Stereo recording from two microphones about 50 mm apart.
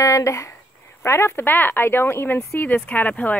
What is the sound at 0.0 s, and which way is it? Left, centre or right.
Speech, left.